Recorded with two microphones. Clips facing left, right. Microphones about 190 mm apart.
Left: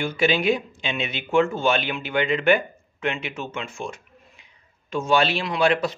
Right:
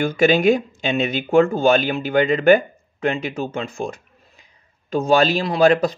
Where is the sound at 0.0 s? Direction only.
45° right (ahead or behind).